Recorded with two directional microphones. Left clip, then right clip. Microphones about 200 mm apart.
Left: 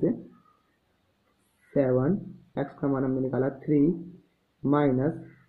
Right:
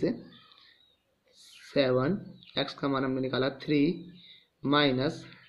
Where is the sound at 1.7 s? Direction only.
15° right (ahead or behind).